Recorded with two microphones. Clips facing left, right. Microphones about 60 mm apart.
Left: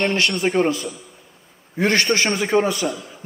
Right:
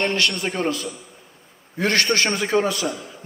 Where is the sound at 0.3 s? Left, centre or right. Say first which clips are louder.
Left 5 dB; centre.